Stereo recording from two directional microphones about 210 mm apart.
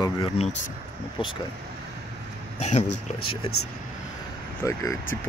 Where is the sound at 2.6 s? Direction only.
30° left (ahead or behind).